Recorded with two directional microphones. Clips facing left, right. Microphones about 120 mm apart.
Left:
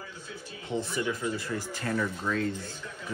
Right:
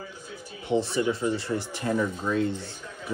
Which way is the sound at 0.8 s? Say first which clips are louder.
Right 5 dB; 25° right (ahead or behind).